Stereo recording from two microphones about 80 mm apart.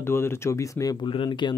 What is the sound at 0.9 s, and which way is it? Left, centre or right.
Speech, left.